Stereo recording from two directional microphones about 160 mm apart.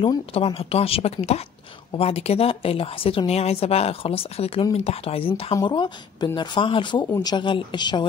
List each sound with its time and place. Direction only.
0.0 s a woman's voice: 35° left (ahead or behind)